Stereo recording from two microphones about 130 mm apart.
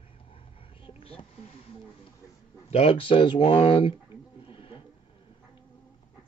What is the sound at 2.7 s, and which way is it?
Speech, 45° left (ahead or behind).